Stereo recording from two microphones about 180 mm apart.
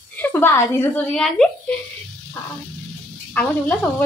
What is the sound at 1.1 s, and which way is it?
Speech, 5° left (ahead or behind).